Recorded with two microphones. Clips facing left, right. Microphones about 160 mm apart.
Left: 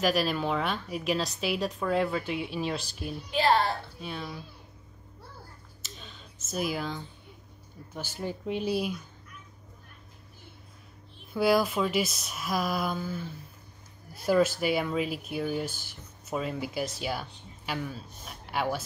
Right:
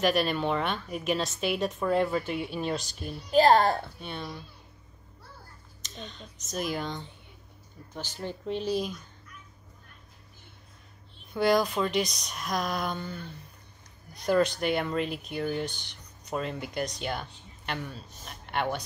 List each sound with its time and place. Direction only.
0.0 s speech: centre (ahead or behind)
3.3 s a child's voice: 45° right (ahead or behind)
4.0 s speech: centre (ahead or behind)
5.8 s a sound: 5° left (ahead or behind)
6.5 s speech: 5° left (ahead or behind)
11.3 s speech: 5° left (ahead or behind)